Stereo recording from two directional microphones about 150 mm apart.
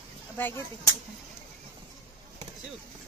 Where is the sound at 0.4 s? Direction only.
15° left (ahead or behind).